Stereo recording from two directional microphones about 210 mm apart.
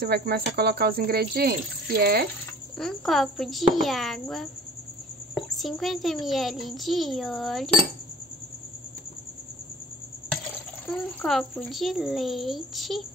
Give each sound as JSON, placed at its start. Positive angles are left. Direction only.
{"t": 0.0, "sound": "speech", "side_deg": -50}
{"t": 2.8, "sound": "a child's voice", "side_deg": 0}
{"t": 10.9, "sound": "a child's voice", "side_deg": 0}